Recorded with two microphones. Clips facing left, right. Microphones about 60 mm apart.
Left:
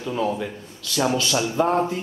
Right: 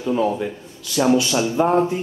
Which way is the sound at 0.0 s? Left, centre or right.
Centre.